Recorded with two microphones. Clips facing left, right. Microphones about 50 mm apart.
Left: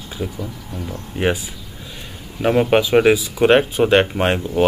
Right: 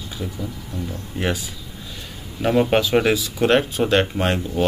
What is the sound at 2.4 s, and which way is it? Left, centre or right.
Speech, centre.